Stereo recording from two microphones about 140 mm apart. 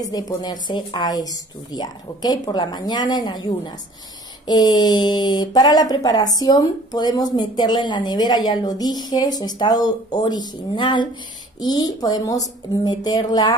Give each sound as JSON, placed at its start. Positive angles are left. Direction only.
{"t": 0.0, "sound": "a woman's voice", "side_deg": 25}